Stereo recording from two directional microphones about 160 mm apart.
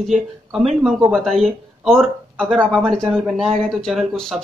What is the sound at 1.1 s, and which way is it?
Speech, centre (ahead or behind).